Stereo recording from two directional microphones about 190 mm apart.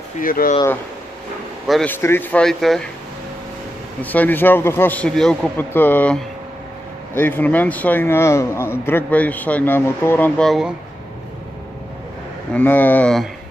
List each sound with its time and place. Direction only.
0.2 s speech: 50° left (ahead or behind)
1.7 s speech: 5° left (ahead or behind)
4.0 s a man's voice: 10° left (ahead or behind)
12.5 s a man's voice: 10° left (ahead or behind)